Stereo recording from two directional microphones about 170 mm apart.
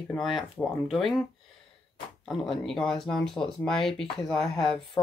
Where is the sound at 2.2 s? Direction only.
Centre (ahead or behind).